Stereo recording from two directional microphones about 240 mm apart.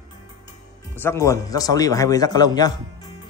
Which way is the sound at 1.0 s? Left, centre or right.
Centre.